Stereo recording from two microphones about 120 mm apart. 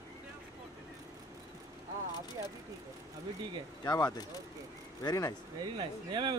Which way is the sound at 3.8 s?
35° left (ahead or behind).